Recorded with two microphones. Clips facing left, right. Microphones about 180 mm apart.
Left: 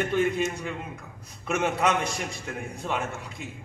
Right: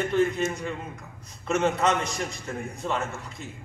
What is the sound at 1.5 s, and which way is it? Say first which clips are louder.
A man's voice: right 1 dB; 10° left (ahead or behind).